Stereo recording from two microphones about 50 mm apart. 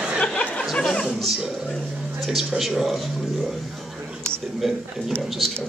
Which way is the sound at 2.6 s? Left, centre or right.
Centre.